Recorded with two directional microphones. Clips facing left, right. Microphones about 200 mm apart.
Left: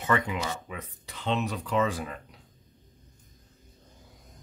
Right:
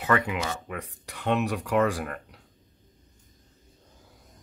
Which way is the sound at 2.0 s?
65° right (ahead or behind).